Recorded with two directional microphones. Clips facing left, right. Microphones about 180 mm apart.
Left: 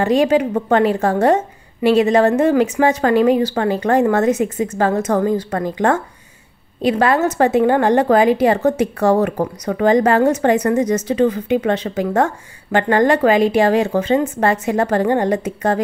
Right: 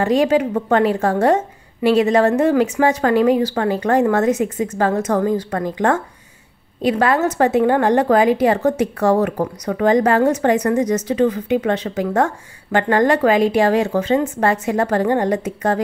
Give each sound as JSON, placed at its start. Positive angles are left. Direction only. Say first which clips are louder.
{"t": 0.0, "sound": "a woman's voice", "louder": "left 1 dB", "side_deg": 20}